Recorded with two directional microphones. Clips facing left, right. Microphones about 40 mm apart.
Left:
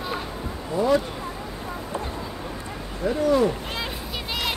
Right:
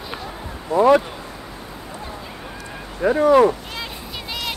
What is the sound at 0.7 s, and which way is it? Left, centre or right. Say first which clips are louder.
Speech: right 7 dB; right.